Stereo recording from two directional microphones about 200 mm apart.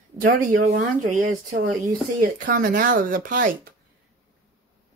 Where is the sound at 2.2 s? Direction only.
45° right (ahead or behind).